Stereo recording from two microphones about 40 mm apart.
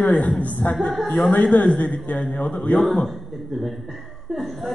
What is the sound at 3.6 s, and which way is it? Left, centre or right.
A man's voice, centre.